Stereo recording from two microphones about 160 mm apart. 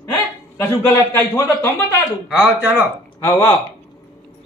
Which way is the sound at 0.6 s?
15° left (ahead or behind).